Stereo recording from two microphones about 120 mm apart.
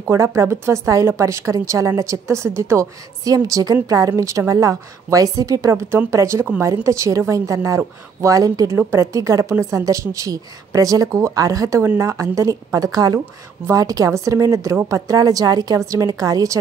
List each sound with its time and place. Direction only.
0.0 s a woman's voice: 25° right (ahead or behind)